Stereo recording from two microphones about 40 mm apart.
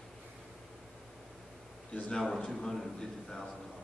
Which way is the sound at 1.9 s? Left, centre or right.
Left.